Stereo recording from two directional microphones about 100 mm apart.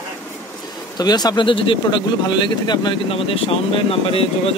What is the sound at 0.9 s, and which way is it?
Speech, 45° left (ahead or behind).